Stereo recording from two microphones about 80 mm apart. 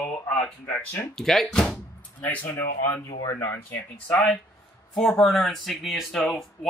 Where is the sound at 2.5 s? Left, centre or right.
Left.